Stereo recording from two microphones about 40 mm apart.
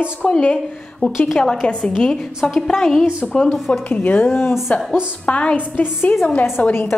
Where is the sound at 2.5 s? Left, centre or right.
Centre.